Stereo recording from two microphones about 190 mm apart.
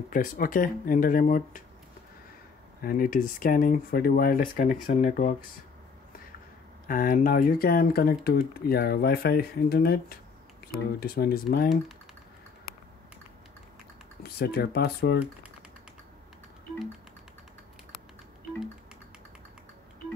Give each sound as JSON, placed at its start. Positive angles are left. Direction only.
{"t": 0.1, "sound": "speech", "side_deg": 45}
{"t": 2.8, "sound": "speech", "side_deg": 50}
{"t": 6.9, "sound": "speech", "side_deg": 45}
{"t": 14.2, "sound": "speech", "side_deg": 55}